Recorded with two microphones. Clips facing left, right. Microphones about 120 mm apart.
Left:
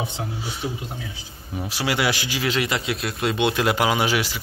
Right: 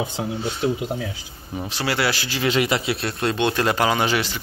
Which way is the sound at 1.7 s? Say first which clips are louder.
Even; 10° left (ahead or behind).